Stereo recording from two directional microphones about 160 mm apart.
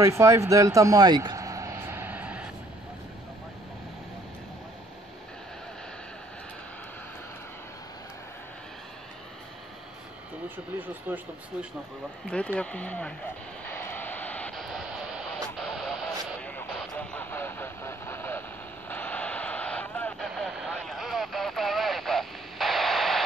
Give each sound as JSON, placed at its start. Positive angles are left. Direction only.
{"t": 0.0, "sound": "vehicle", "side_deg": -20}
{"t": 11.1, "sound": "speech", "side_deg": -10}
{"t": 12.3, "sound": "a sound", "side_deg": 5}
{"t": 18.9, "sound": "vehicle", "side_deg": 10}